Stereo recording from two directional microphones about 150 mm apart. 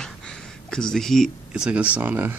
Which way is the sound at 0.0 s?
5° left (ahead or behind).